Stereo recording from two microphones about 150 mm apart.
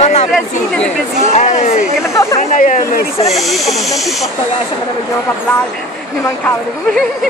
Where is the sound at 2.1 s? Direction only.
20° left (ahead or behind).